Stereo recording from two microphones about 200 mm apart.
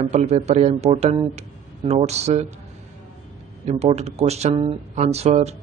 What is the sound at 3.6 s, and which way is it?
Speech, 35° right (ahead or behind).